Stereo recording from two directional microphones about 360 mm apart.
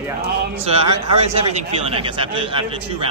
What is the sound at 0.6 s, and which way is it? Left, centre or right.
Speech, centre.